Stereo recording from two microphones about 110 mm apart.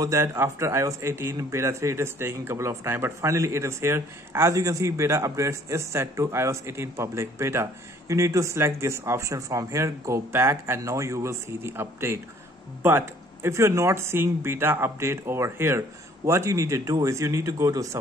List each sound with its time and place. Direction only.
0.0 s a man's voice: 25° right (ahead or behind)